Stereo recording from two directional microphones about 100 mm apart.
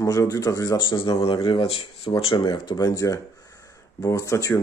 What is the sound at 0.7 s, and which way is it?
Speech, 50° left (ahead or behind).